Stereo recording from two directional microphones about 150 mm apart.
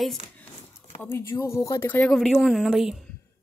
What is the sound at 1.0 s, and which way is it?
Speech, 15° left (ahead or behind).